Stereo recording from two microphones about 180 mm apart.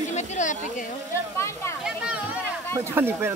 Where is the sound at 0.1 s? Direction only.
40° left (ahead or behind).